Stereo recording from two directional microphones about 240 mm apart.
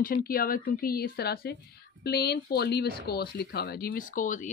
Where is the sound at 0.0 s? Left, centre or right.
Left.